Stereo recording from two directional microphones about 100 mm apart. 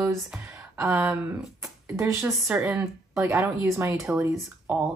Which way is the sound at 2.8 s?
30° right (ahead or behind).